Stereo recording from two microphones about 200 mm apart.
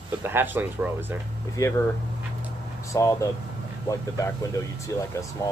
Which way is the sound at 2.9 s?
15° left (ahead or behind).